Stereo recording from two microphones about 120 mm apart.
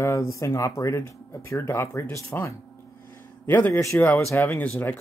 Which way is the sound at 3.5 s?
20° left (ahead or behind).